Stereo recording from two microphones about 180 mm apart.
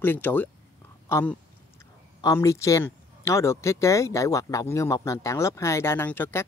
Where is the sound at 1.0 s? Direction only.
15° left (ahead or behind).